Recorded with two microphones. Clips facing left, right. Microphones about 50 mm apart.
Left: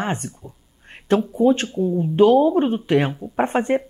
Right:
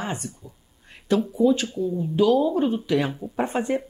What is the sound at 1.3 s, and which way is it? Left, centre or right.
Speech, left.